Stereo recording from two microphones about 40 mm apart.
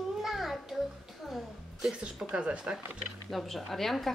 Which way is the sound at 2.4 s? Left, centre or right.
Right.